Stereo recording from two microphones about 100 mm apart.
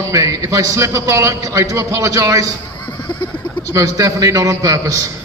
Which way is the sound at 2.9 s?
50° left (ahead or behind).